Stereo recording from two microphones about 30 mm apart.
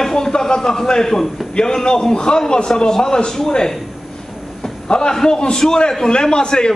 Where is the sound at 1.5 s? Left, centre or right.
Left.